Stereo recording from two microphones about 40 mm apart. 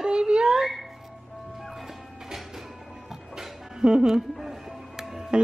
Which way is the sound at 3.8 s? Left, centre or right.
Centre.